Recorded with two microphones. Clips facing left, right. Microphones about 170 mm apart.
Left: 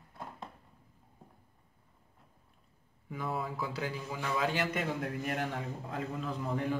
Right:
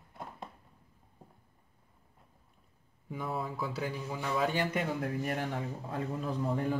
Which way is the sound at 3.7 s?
10° right (ahead or behind).